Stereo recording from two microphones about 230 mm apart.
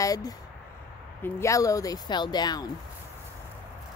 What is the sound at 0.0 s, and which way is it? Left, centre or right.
Speech, centre.